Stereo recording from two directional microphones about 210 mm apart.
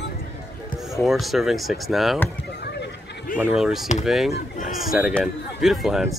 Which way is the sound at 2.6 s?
50° left (ahead or behind).